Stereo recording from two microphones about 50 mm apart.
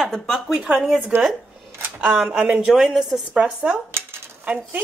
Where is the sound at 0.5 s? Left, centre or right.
Centre.